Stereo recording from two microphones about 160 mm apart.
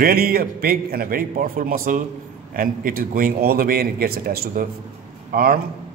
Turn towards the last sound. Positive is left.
turn(degrees=-70)  # may be behind; listen again after turning